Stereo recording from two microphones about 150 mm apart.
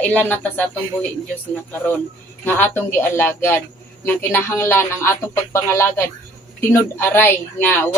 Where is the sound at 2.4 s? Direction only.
15° left (ahead or behind).